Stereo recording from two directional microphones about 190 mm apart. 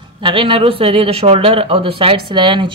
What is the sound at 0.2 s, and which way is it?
Speech, 25° right (ahead or behind).